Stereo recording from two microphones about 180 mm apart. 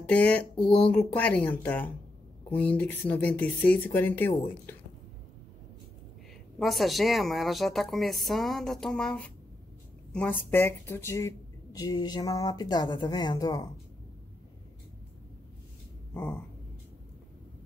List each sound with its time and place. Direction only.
0.1 s speech: 5° left (ahead or behind)
6.6 s a woman's voice: centre (ahead or behind); by 13.7 s 20° left (ahead or behind)
16.1 s a sound: 10° left (ahead or behind)